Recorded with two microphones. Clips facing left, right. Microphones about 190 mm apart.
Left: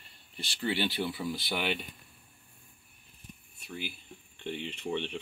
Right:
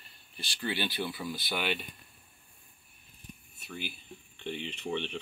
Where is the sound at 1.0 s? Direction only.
15° left (ahead or behind).